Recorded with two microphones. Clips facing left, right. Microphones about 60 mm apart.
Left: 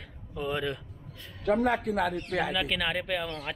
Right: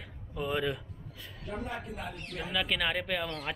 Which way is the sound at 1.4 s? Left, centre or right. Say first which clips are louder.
Left 13 dB; left.